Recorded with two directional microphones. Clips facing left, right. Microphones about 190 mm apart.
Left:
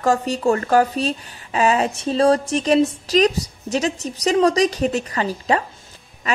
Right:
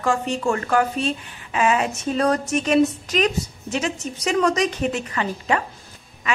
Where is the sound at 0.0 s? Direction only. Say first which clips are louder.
Left 3 dB; 40° left (ahead or behind).